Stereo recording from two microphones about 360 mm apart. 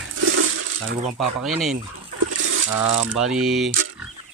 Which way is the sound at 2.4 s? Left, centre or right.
Right.